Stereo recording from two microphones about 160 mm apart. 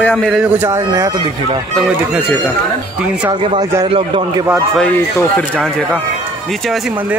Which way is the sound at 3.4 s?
30° right (ahead or behind).